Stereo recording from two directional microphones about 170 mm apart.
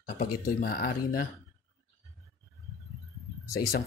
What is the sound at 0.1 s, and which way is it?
Speech, 60° left (ahead or behind).